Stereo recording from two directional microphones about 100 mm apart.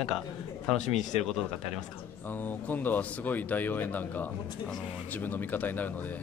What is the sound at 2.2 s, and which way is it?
Speech, 20° left (ahead or behind).